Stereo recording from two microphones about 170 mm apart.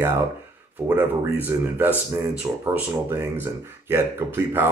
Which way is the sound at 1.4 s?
10° right (ahead or behind).